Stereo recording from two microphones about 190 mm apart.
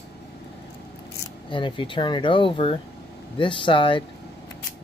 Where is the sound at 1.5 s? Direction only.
25° left (ahead or behind).